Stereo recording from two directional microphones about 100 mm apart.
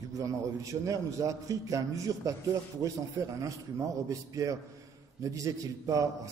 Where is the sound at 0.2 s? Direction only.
35° right (ahead or behind).